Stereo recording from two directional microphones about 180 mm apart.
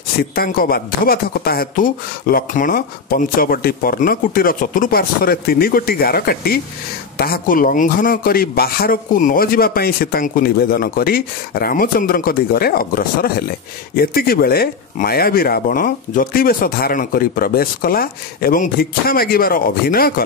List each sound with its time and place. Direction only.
0.2 s speech: 55° left (ahead or behind)